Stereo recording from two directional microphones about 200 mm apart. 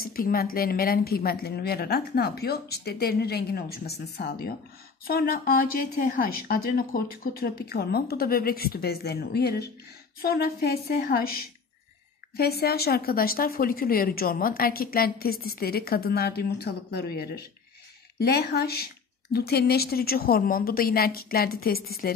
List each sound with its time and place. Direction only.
0.0 s a woman's voice: 45° left (ahead or behind)